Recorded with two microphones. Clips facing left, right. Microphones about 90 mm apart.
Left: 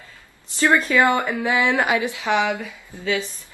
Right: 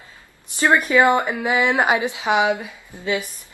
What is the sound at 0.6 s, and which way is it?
Speech, 20° right (ahead or behind).